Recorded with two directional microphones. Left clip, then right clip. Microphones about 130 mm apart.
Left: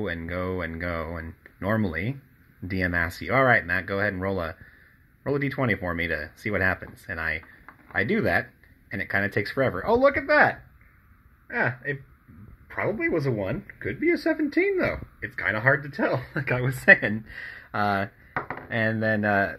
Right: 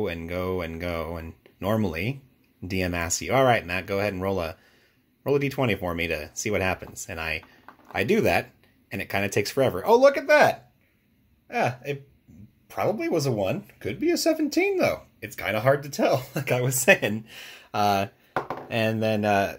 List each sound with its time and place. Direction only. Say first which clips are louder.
0.0 s speech: right 1 dB; 40° right (ahead or behind)